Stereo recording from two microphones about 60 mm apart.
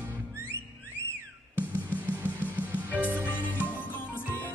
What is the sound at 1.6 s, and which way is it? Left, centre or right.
Music, left.